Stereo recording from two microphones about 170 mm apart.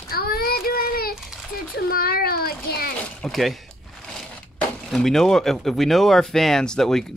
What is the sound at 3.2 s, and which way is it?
Speech, centre (ahead or behind).